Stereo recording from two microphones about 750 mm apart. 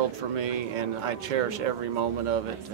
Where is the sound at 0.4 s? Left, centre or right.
Right.